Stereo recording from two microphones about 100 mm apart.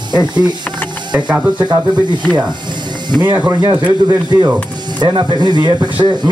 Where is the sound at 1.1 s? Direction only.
15° right (ahead or behind).